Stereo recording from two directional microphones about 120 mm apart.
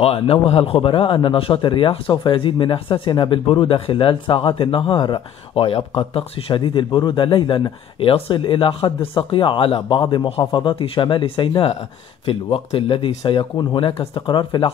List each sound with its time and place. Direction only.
0.0 s a man's voice: 50° left (ahead or behind)